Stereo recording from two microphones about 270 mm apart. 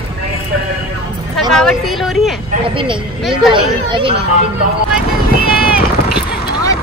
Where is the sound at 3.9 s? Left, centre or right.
Centre.